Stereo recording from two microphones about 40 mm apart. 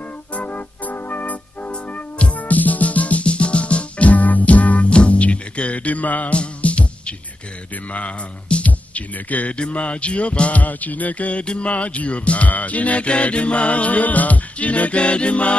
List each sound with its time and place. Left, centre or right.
0.3 s music: left
1.7 s music: left
2.3 s music: left